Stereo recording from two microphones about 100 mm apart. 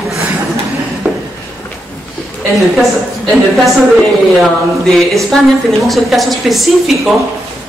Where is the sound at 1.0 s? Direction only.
15° right (ahead or behind).